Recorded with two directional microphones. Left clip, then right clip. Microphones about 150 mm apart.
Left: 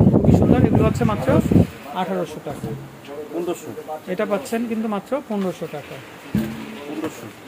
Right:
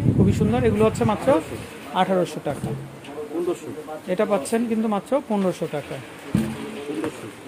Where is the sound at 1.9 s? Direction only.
35° right (ahead or behind).